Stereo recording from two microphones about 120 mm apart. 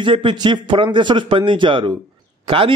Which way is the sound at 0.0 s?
45° right (ahead or behind).